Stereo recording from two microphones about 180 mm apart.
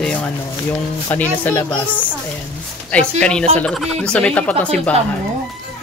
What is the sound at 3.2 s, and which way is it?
Speech, 5° left (ahead or behind).